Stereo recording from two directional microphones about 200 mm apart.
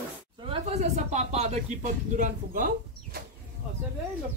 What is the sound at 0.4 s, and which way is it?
Speech, 30° right (ahead or behind).